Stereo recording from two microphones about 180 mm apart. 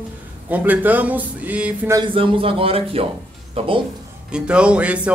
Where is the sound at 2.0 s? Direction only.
30° right (ahead or behind).